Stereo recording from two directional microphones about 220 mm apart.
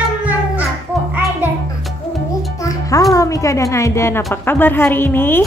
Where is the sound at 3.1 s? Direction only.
15° left (ahead or behind).